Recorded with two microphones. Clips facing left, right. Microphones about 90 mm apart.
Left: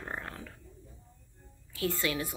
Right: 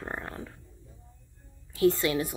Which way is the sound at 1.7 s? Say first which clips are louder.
Right 8 dB; 25° right (ahead or behind).